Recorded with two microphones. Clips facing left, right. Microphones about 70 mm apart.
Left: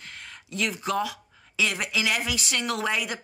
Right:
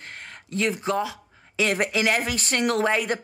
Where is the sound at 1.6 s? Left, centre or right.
Right.